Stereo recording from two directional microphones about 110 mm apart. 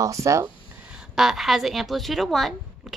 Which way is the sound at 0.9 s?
5° right (ahead or behind).